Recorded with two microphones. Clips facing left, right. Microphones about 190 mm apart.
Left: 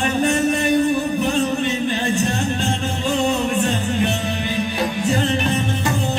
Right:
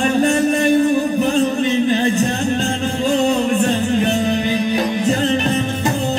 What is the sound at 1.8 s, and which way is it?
Music, 45° right (ahead or behind).